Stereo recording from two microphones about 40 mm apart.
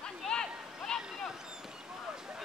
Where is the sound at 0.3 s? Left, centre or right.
Centre.